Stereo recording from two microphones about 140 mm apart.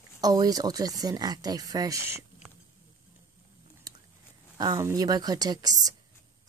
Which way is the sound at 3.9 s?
25° right (ahead or behind).